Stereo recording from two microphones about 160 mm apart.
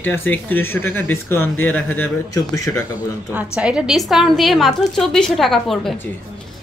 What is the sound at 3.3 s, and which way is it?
A woman's voice, 5° right (ahead or behind).